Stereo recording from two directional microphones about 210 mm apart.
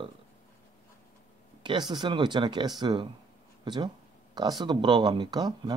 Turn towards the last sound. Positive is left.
turn(degrees=-20)  # may be behind; listen again after turning